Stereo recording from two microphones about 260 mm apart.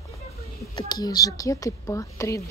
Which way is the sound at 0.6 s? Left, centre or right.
Centre.